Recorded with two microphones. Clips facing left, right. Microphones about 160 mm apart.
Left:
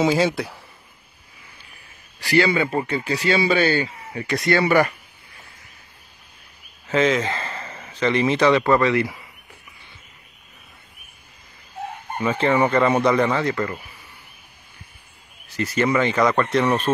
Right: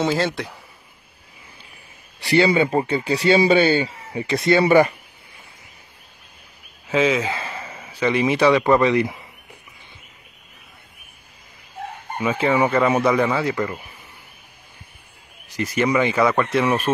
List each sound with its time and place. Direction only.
0.0 s speech: 10° left (ahead or behind)
2.2 s speech: 30° right (ahead or behind)
6.9 s a man's voice: 10° right (ahead or behind)
12.2 s speech: 10° right (ahead or behind)
15.5 s speech: 15° right (ahead or behind)